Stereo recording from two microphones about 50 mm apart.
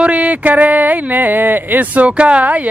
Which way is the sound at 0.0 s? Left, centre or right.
Right.